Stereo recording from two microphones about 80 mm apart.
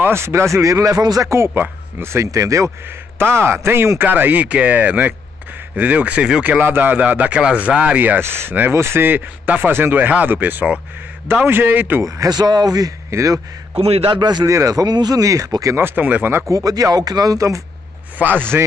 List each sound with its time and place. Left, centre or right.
0.0 s speech: right
3.3 s speech: right; by 6.4 s centre
6.6 s speech: right
12.0 s speech: right
14.1 s speech: right
14.4 s speech: right
15.8 s speech: right
16.4 s speech: right
18.1 s speech: right